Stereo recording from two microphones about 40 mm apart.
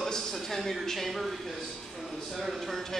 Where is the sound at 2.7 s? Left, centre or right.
Centre.